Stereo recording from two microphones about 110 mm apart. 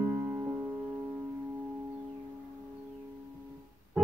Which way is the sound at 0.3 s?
20° right (ahead or behind).